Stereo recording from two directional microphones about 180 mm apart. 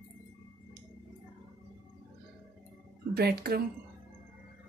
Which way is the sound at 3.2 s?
60° right (ahead or behind).